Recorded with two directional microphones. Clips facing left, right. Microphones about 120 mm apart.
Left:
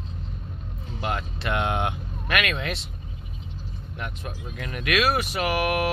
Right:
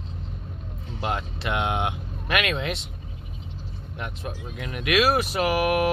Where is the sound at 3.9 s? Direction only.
25° right (ahead or behind).